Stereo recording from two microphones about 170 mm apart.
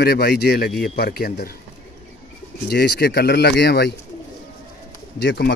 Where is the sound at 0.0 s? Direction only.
70° left (ahead or behind).